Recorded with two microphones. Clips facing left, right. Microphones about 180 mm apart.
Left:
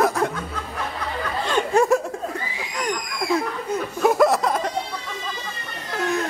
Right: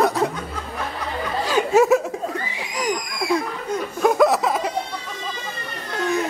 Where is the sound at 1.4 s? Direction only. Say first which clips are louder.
Right 3 dB; 5° right (ahead or behind).